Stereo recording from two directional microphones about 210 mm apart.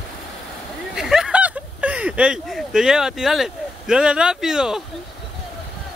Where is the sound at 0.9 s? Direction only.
Centre (ahead or behind).